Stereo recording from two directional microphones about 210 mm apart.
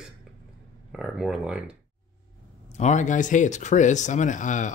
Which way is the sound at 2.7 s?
35° left (ahead or behind).